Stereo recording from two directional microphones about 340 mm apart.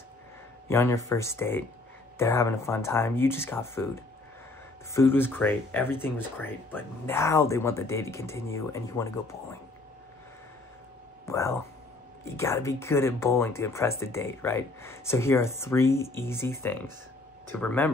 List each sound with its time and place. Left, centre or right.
0.7 s speech: centre
11.2 s speech: centre